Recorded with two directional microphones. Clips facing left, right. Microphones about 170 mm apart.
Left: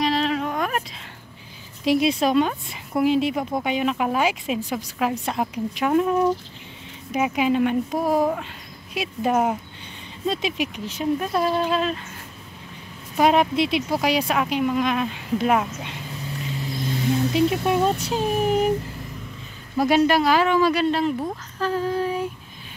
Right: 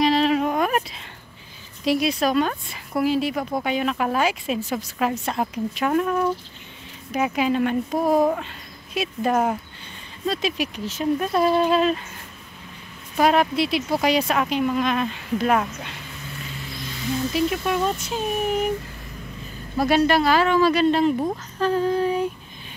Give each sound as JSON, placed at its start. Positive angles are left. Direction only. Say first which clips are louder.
{"t": 0.0, "sound": "a sound", "louder": "right 4 dB", "side_deg": -5}
{"t": 1.9, "sound": "speech", "louder": "left 2 dB", "side_deg": 25}
{"t": 11.1, "sound": "female singing", "louder": "right 5 dB", "side_deg": -5}
{"t": 13.2, "sound": "speech", "louder": "left 1 dB", "side_deg": 20}
{"t": 16.7, "sound": "a sound", "louder": "left 4 dB", "side_deg": 45}
{"t": 17.3, "sound": "speech", "louder": "left 1 dB", "side_deg": 25}
{"t": 19.8, "sound": "speech", "louder": "even", "side_deg": 15}
{"t": 21.5, "sound": "female singing", "louder": "right 2 dB", "side_deg": 5}